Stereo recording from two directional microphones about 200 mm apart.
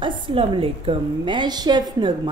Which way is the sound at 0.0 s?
25° right (ahead or behind).